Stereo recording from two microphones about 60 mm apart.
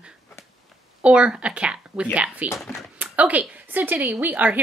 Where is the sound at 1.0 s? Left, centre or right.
Centre.